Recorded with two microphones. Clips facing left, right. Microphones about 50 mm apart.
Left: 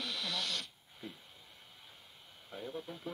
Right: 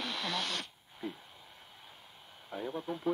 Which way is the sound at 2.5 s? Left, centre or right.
Centre.